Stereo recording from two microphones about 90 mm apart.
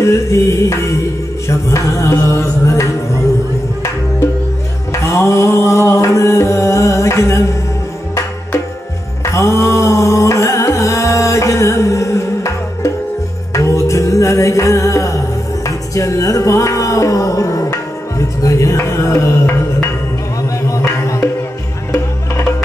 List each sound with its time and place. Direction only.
0.0 s music: 35° left (ahead or behind)
4.9 s music: 35° left (ahead or behind)
9.2 s music: 35° left (ahead or behind)